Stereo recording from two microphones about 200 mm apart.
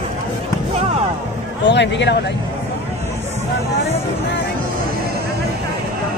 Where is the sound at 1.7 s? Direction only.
60° left (ahead or behind).